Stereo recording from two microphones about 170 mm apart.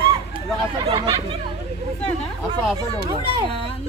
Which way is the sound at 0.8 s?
30° right (ahead or behind).